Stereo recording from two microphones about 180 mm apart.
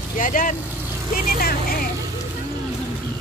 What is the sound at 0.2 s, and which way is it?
Speech, 50° left (ahead or behind).